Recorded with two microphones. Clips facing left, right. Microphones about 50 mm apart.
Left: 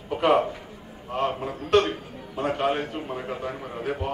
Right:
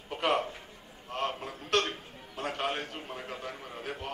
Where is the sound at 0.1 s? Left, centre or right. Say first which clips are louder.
Left 8 dB; centre.